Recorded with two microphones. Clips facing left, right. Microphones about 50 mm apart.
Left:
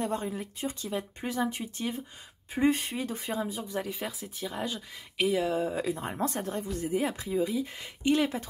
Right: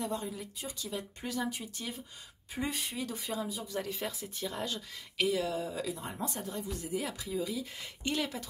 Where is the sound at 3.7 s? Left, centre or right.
Centre.